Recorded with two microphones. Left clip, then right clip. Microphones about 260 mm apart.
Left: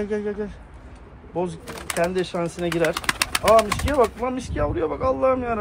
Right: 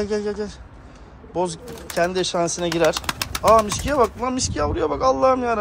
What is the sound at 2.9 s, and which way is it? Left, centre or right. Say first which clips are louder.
Bird: left 2 dB; centre.